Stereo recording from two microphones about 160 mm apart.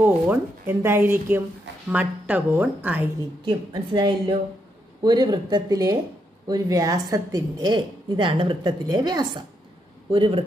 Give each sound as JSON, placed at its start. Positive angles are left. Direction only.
{"t": 0.0, "sound": "speech", "side_deg": -15}
{"t": 3.4, "sound": "a woman's voice", "side_deg": -30}